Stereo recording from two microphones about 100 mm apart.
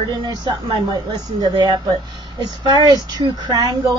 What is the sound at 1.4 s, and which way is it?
A woman's voice, 50° right (ahead or behind).